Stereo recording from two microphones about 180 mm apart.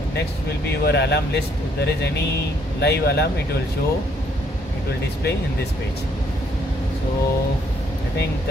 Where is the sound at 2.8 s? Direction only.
65° left (ahead or behind).